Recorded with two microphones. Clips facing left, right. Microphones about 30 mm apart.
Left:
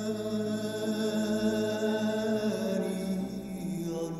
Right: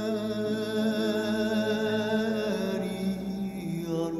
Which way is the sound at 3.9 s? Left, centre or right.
Right.